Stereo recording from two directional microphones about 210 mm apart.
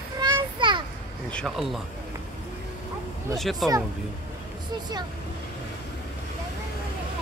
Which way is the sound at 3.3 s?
Centre (ahead or behind).